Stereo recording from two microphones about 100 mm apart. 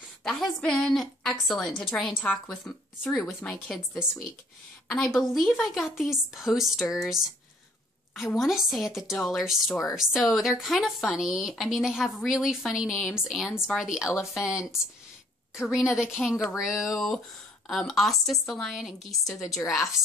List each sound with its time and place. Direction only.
0.2 s a woman's voice: 5° left (ahead or behind)
3.0 s speech: centre (ahead or behind)
4.8 s a woman's voice: 5° left (ahead or behind)
8.4 s speech: 5° right (ahead or behind)